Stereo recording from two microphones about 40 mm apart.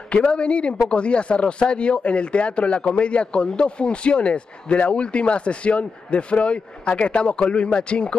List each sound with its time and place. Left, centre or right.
0.1 s speech: left